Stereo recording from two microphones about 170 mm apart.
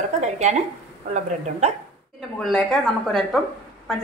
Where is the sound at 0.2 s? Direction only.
45° right (ahead or behind).